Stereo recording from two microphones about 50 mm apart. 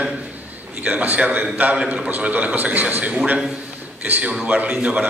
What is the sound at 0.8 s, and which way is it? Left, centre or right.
Speech, right.